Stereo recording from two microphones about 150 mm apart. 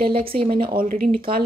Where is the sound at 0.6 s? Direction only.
70° right (ahead or behind).